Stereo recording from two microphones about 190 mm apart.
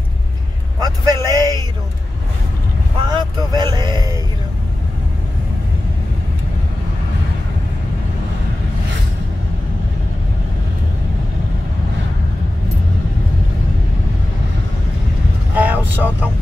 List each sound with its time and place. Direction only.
0.7 s vehicle: 20° right (ahead or behind)
3.1 s vehicle: 25° right (ahead or behind)
15.5 s vehicle: 10° right (ahead or behind)